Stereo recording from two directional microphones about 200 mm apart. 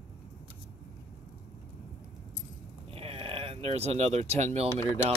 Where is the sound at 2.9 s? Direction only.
30° right (ahead or behind).